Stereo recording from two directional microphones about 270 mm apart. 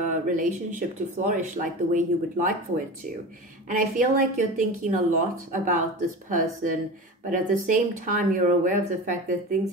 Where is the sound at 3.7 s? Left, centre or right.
Right.